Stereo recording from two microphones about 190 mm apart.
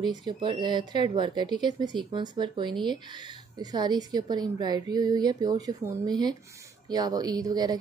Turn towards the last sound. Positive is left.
turn(degrees=-20)  # may be behind; listen again after turning